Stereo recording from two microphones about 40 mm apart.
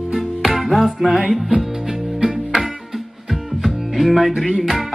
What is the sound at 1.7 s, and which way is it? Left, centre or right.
Music, centre.